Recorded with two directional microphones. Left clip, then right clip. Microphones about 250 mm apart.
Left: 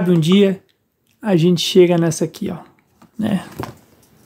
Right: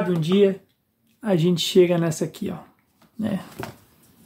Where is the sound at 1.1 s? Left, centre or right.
Left.